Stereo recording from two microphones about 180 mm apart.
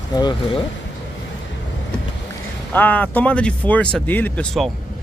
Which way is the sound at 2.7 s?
10° left (ahead or behind).